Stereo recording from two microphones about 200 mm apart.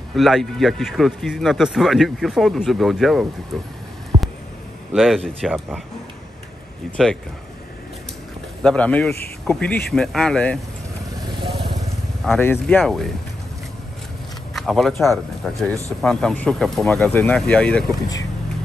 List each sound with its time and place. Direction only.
0.1 s speech: centre (ahead or behind)
4.1 s a sound: 30° right (ahead or behind)
4.9 s speech: centre (ahead or behind)
8.6 s speech: 5° left (ahead or behind)
12.3 s speech: 10° left (ahead or behind)
14.5 s speech: centre (ahead or behind)